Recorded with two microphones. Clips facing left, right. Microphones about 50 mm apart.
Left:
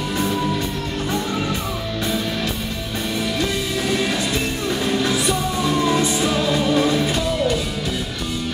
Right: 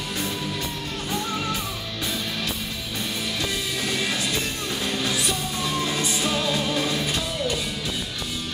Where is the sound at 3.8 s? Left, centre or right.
Centre.